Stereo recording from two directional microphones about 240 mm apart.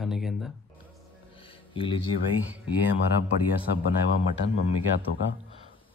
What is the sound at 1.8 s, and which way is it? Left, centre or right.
Speech, left.